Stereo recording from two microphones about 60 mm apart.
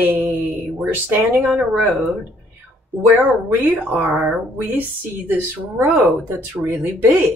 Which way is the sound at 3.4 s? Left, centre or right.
Right.